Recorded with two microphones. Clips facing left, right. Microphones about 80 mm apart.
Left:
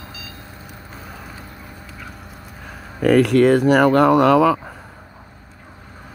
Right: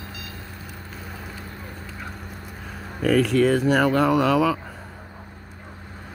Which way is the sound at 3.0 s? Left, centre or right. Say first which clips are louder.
Left 5 dB; left.